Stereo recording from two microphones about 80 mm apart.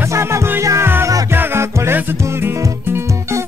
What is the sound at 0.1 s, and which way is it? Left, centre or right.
Music, right.